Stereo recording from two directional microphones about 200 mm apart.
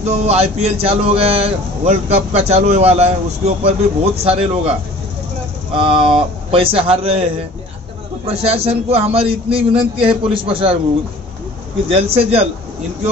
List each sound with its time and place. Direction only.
0.0 s a man's voice: 30° right (ahead or behind)
8.3 s a man's voice: 30° right (ahead or behind)
11.9 s speech: 30° right (ahead or behind)